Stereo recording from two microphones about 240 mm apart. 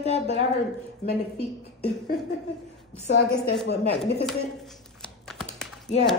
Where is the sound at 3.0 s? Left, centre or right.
Left.